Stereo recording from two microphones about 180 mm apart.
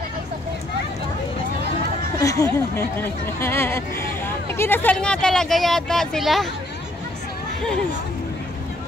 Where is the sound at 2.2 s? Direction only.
20° left (ahead or behind); by 6.4 s centre (ahead or behind).